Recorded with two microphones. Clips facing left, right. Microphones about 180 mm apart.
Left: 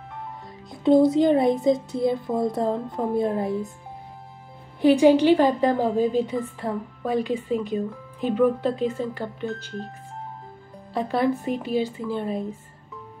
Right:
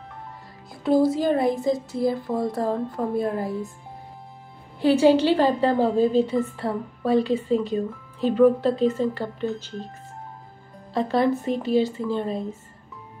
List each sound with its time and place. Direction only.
0.7 s speech: 20° left (ahead or behind)
4.8 s speech: 15° left (ahead or behind)
10.9 s speech: 10° left (ahead or behind)